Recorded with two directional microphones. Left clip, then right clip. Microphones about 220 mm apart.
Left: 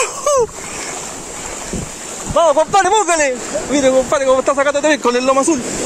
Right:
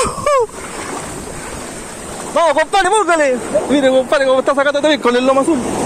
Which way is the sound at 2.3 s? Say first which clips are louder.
Left 1 dB; 5° right (ahead or behind).